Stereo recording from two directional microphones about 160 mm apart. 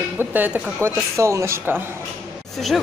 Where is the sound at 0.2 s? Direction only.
10° right (ahead or behind).